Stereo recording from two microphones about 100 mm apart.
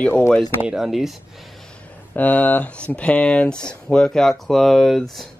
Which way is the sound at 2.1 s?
15° left (ahead or behind).